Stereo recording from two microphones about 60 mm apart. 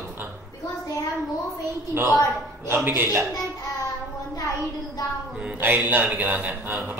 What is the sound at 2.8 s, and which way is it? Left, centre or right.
Speech, right.